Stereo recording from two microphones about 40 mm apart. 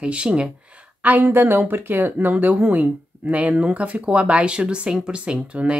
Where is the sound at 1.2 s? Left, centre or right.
Right.